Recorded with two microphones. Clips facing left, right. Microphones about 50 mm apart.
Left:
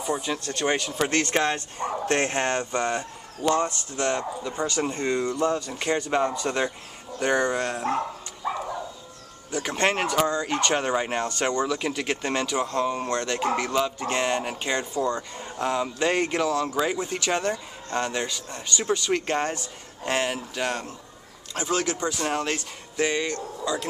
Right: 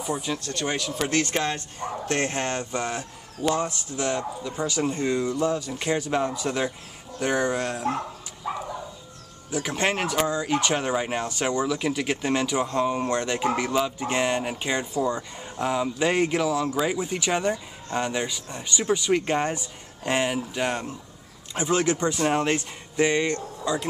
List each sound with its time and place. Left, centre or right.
0.0 s speech: centre
0.6 s speech: left
0.9 s speech: centre
2.0 s speech: left
2.8 s speech: centre
9.5 s speech: centre; by 23.9 s right